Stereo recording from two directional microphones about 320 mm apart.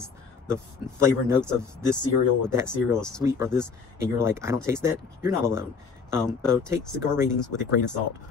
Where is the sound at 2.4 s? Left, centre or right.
Centre.